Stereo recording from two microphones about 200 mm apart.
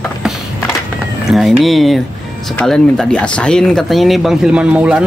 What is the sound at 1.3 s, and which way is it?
Speech, centre (ahead or behind).